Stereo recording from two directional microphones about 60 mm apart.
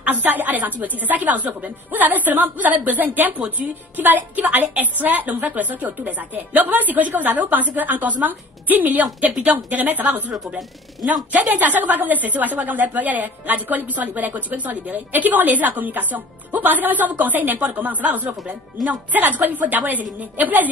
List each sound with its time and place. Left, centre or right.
0.0 s a woman's voice: right
11.3 s a woman's voice: right